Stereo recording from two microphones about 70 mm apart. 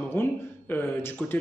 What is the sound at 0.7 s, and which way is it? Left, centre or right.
Speech, left.